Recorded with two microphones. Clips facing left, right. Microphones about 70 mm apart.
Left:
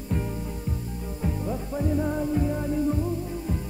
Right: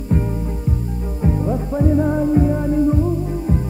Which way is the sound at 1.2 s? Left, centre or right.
Right.